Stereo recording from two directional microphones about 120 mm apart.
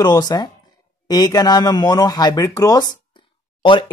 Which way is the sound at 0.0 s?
35° left (ahead or behind).